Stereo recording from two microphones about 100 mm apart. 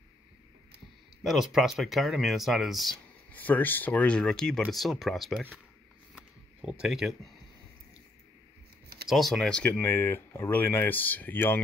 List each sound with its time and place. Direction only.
1.2 s speech: centre (ahead or behind)
3.3 s speech: 15° left (ahead or behind); by 5.4 s centre (ahead or behind)
6.1 s a sound: 5° right (ahead or behind)
9.1 s speech: centre (ahead or behind); by 11.6 s 20° left (ahead or behind)